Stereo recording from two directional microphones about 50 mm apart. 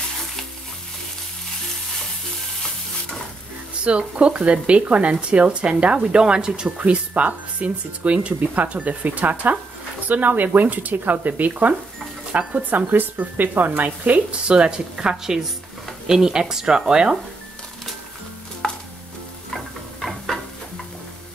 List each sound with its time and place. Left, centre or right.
3.8 s speech: right
6.8 s speech: right
14.5 s speech: centre
18.6 s chopping: centre
19.5 s a sound: centre